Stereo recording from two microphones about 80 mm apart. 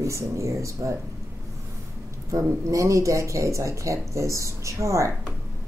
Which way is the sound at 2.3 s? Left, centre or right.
Right.